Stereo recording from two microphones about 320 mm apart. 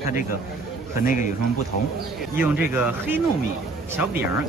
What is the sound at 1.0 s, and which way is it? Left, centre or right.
Speech, left.